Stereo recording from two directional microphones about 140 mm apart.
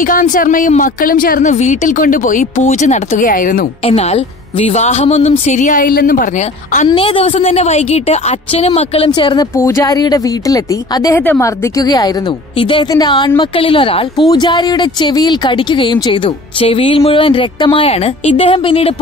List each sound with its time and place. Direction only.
0.0 s a woman's voice: 75° left (ahead or behind)
3.8 s a woman's voice: 45° left (ahead or behind); by 6.2 s 90° left
6.9 s a woman's voice: 40° left (ahead or behind)
9.6 s speech: 20° left (ahead or behind); by 18.9 s 40° left (ahead or behind)